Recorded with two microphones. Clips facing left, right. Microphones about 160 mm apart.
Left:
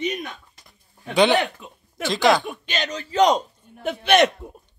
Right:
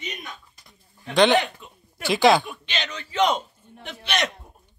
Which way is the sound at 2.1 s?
20° right (ahead or behind).